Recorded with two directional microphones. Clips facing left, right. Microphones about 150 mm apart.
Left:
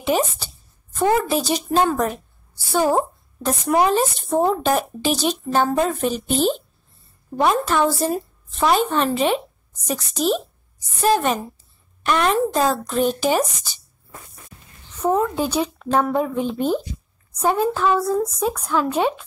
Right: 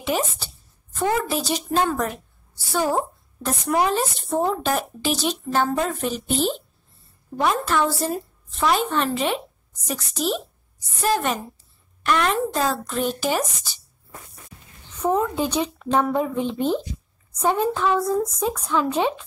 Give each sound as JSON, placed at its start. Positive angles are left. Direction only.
{"t": 0.0, "sound": "speech", "side_deg": 15}
{"t": 3.4, "sound": "speech", "side_deg": 15}
{"t": 15.0, "sound": "speech", "side_deg": 10}